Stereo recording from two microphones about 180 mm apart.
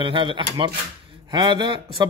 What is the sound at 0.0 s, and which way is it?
Speech, 30° right (ahead or behind).